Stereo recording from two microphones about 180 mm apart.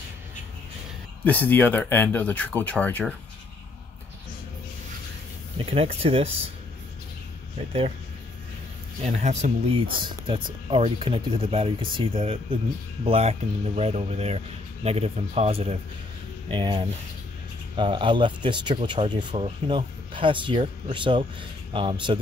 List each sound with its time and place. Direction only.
1.2 s speech: 10° left (ahead or behind)
5.6 s speech: 30° right (ahead or behind)
7.5 s speech: 30° right (ahead or behind)
9.0 s speech: 40° right (ahead or behind)